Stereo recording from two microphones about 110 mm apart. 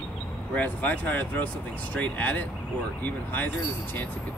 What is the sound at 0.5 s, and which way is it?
Speech, 15° left (ahead or behind).